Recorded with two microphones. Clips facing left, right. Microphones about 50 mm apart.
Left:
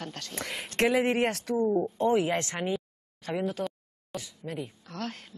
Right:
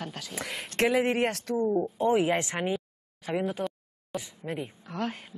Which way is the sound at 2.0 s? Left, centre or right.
Centre.